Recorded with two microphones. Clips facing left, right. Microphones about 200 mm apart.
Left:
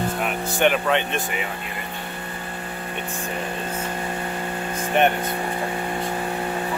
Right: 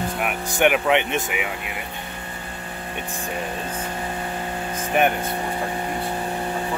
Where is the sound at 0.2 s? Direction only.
15° right (ahead or behind).